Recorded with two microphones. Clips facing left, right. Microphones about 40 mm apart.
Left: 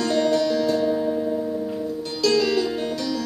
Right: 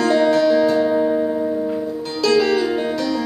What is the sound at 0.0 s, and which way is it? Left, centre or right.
Music, centre.